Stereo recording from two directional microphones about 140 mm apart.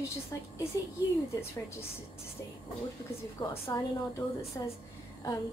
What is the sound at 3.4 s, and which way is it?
A woman's voice, 20° left (ahead or behind).